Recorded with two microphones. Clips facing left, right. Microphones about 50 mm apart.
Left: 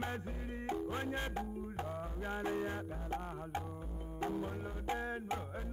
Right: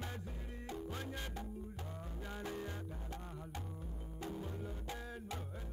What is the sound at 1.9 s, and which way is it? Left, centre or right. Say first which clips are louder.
Music: left 7 dB; left.